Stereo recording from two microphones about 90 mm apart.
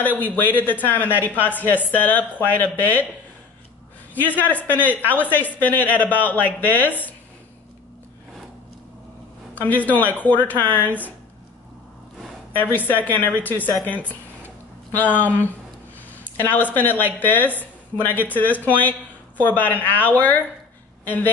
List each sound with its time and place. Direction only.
0.0 s a woman's voice: 20° left (ahead or behind)
4.1 s a woman's voice: 20° left (ahead or behind)
9.6 s a woman's voice: 20° left (ahead or behind)
12.7 s a woman's voice: 20° left (ahead or behind)
15.0 s a woman's voice: 20° left (ahead or behind)